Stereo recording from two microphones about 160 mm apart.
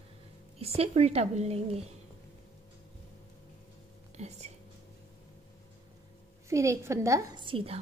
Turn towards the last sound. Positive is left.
turn(degrees=-35)  # may be behind; listen again after turning